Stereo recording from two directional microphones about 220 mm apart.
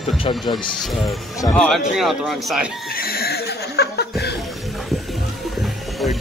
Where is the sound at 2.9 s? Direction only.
45° left (ahead or behind).